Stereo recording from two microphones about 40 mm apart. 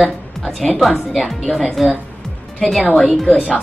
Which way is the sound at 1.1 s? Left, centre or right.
Centre.